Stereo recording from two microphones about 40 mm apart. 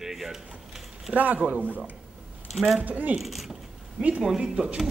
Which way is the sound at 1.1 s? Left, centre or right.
Right.